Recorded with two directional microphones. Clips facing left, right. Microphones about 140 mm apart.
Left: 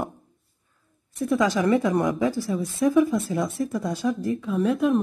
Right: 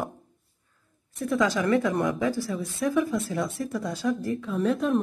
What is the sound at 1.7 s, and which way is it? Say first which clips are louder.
Speech: left 2 dB; centre (ahead or behind).